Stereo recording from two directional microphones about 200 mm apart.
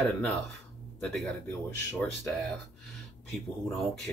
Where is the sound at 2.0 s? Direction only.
Centre (ahead or behind).